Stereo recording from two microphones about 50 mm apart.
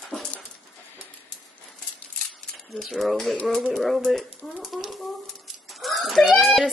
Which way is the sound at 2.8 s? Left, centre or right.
Centre.